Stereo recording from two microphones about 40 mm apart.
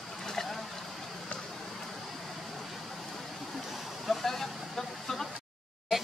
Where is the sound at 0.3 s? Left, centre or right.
Centre.